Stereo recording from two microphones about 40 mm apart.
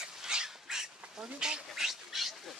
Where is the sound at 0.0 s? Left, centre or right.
Centre.